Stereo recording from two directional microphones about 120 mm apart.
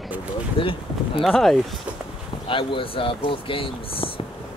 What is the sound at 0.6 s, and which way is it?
Speech, 45° left (ahead or behind).